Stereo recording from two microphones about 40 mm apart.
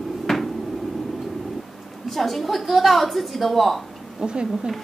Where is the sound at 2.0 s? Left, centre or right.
Centre.